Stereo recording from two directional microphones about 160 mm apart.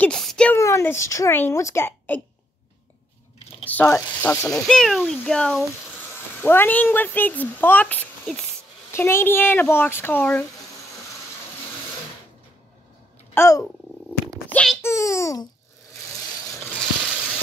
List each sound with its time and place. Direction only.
0.0 s speech: 5° left (ahead or behind)
0.6 s a child's voice: 20° left (ahead or behind)
3.6 s speech: 15° left (ahead or behind)
6.4 s speech: 15° left (ahead or behind)
13.3 s speech: 20° left (ahead or behind)
14.5 s wail: 5° left (ahead or behind)
14.8 s a child's voice: 20° left (ahead or behind)